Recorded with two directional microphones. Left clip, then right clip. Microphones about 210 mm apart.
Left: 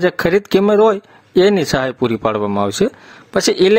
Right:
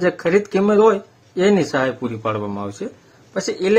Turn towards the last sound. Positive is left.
turn(degrees=40)  # may be behind; listen again after turning